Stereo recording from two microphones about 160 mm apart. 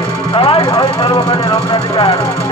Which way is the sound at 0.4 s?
35° left (ahead or behind).